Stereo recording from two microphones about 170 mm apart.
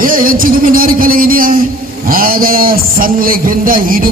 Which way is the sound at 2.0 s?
55° right (ahead or behind).